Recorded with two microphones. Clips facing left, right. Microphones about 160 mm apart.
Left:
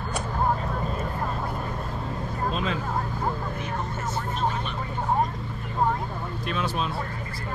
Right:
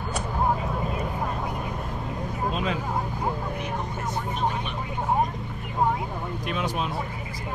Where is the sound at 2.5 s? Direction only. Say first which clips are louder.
Even; 15° right (ahead or behind).